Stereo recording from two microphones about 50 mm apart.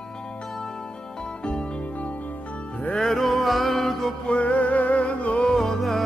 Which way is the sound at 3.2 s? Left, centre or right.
Centre.